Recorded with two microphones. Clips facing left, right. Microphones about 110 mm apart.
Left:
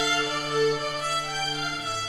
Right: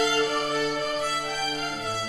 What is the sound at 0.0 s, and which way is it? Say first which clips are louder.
Music: right 4 dB; 45° right (ahead or behind).